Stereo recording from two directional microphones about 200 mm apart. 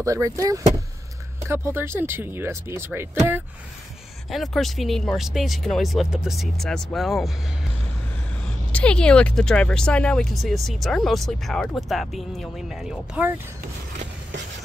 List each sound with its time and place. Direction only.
0.0 s speech: 15° right (ahead or behind)
4.3 s speech: centre (ahead or behind)
8.5 s speech: 5° left (ahead or behind)